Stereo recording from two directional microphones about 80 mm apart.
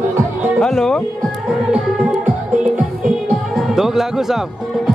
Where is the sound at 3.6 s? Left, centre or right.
Centre.